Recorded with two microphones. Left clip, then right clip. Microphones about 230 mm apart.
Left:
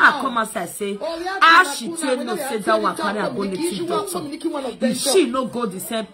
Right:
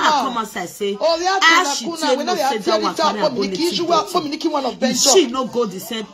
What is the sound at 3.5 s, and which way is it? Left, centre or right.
Speech, right.